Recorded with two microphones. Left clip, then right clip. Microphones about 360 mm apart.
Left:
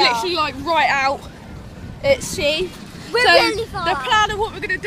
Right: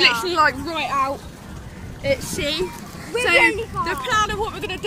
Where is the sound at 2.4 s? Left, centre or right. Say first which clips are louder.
Left 4 dB; centre.